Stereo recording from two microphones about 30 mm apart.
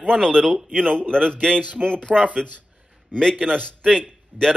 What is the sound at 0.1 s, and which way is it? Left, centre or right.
Speech, centre.